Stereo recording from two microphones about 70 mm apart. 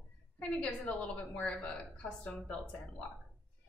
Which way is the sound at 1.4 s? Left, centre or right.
Centre.